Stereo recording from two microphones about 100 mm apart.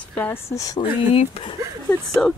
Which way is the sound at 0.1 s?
15° left (ahead or behind).